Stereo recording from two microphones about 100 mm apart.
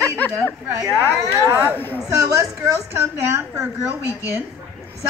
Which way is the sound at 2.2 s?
35° right (ahead or behind).